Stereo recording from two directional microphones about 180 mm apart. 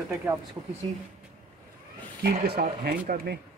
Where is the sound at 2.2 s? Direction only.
55° right (ahead or behind).